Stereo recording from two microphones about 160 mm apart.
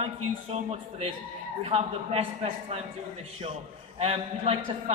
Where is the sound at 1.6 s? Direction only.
40° right (ahead or behind).